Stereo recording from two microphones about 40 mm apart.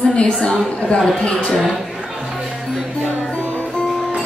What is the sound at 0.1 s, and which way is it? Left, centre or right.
Speech, left.